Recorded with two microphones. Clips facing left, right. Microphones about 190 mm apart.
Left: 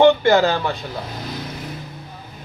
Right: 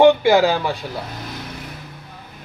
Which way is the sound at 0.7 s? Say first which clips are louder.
Right 1 dB; centre (ahead or behind).